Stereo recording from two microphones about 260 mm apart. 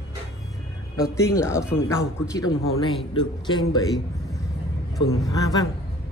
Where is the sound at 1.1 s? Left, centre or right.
Centre.